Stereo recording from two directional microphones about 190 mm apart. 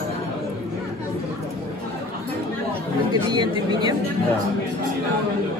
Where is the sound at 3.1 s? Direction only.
20° right (ahead or behind).